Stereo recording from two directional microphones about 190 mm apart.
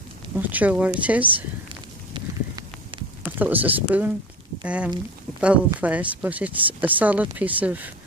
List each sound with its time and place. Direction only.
0.4 s speech: 10° right (ahead or behind)
2.1 s clip-clop: 25° right (ahead or behind)
3.3 s speech: 10° right (ahead or behind)